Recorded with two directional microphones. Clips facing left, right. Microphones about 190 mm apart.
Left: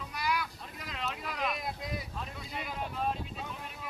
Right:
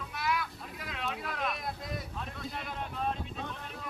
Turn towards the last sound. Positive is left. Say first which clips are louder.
# right 1 dB
turn(degrees=5)  # may be behind; listen again after turning